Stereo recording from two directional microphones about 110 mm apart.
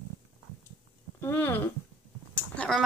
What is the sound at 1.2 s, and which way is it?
Speech, 20° left (ahead or behind).